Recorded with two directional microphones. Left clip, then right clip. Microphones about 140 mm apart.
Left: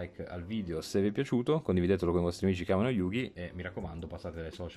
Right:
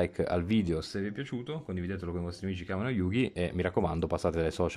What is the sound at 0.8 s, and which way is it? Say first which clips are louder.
Speech: left 5 dB; 25° left (ahead or behind).